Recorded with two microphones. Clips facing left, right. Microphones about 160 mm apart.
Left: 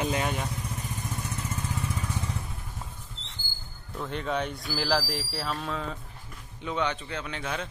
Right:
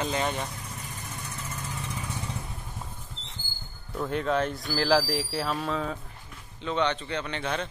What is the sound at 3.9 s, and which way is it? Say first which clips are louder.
Speech: right 4 dB; centre (ahead or behind).